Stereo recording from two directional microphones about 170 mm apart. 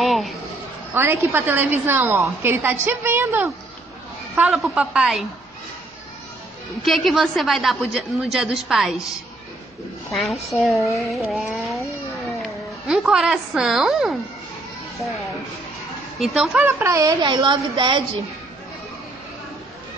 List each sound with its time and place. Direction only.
0.0 s a sound: centre (ahead or behind)
0.9 s a woman's voice: 15° right (ahead or behind)
6.8 s a woman's voice: centre (ahead or behind)
10.1 s a woman's voice: centre (ahead or behind)
16.2 s a woman's voice: 5° right (ahead or behind); by 18.0 s 25° right (ahead or behind)